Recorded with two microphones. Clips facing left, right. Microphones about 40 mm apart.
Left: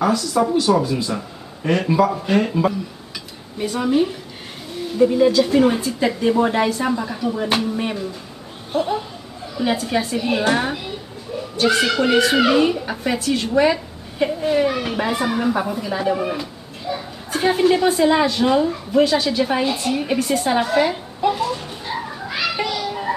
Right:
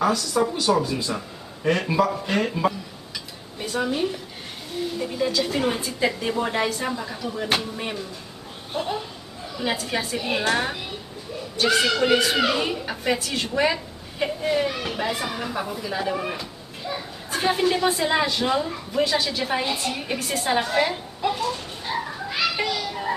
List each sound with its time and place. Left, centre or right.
0.0 s a woman's voice: centre
22.5 s children playing: centre